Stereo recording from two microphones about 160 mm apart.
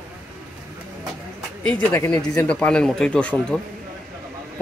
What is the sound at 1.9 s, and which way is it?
Speech, 20° left (ahead or behind).